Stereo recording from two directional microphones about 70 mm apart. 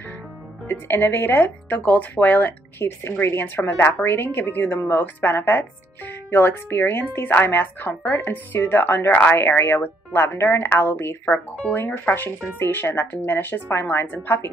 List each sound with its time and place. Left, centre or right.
0.7 s speech: left
11.2 s speech: left